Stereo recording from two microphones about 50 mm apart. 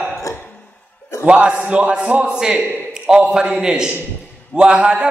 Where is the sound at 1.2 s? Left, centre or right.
Right.